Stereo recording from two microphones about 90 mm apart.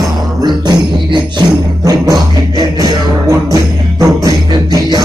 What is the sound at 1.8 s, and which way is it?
Music, 45° right (ahead or behind).